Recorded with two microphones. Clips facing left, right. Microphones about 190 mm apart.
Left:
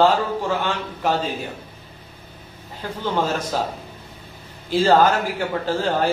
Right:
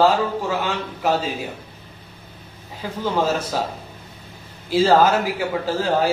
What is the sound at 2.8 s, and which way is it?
Speech, 5° right (ahead or behind).